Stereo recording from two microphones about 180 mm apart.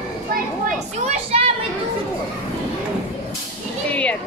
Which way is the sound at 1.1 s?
35° right (ahead or behind).